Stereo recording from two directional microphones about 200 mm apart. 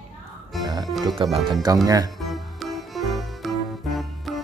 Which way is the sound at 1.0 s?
20° right (ahead or behind).